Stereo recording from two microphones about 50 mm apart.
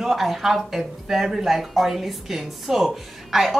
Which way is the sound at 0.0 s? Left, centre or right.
Centre.